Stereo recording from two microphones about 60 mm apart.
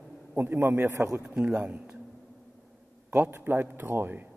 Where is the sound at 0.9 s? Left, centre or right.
Right.